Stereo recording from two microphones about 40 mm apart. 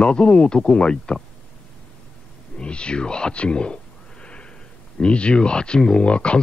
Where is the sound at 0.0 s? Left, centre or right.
Left.